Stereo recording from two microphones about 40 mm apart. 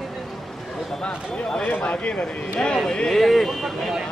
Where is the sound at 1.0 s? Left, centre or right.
Left.